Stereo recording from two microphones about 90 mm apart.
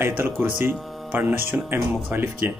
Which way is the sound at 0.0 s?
25° right (ahead or behind).